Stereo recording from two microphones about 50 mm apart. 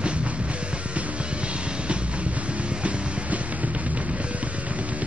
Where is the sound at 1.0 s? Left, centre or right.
Right.